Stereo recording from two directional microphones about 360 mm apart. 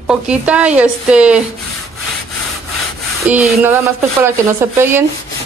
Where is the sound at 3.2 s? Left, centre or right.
Centre.